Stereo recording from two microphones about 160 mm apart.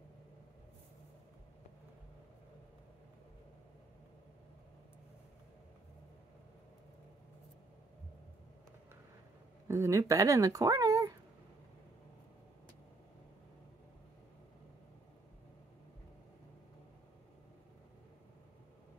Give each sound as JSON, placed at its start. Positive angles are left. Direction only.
{"t": 9.7, "sound": "speech", "side_deg": -20}